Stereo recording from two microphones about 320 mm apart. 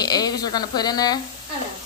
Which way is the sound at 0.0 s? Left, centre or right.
Centre.